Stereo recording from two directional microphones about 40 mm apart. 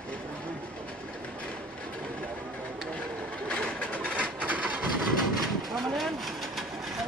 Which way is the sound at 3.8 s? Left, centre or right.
Left.